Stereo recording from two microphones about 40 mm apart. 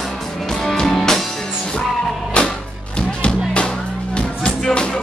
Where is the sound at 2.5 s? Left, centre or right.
Left.